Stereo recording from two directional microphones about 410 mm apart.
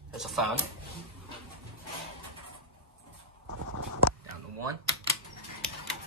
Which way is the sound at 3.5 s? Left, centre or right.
Right.